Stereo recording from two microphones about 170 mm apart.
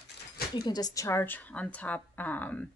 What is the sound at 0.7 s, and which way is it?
A woman's voice, 25° left (ahead or behind).